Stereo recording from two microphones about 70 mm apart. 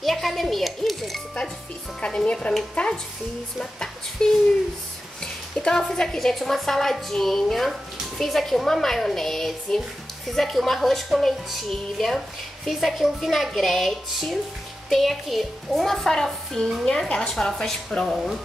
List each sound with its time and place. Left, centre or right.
0.0 s music: centre
2.0 s a woman's voice: centre